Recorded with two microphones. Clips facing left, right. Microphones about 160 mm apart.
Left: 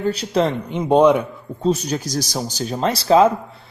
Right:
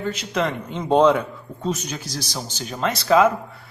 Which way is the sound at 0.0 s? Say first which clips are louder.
Left 5 dB; 35° left (ahead or behind).